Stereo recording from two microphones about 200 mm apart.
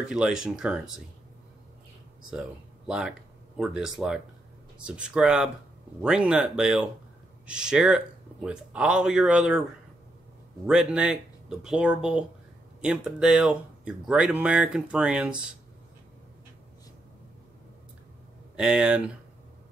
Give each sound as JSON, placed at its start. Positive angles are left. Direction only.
{"t": 0.0, "sound": "speech", "side_deg": -5}
{"t": 2.9, "sound": "speech", "side_deg": -5}
{"t": 10.7, "sound": "speech", "side_deg": -5}
{"t": 18.6, "sound": "speech", "side_deg": -5}